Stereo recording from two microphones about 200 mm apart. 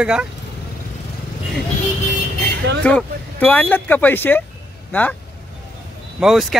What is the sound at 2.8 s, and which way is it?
Speech, 5° left (ahead or behind).